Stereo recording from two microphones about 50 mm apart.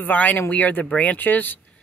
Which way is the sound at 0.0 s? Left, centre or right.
Left.